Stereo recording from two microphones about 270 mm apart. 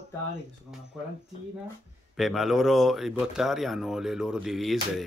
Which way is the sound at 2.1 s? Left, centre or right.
Centre.